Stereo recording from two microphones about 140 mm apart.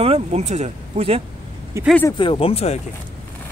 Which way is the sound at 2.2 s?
40° left (ahead or behind).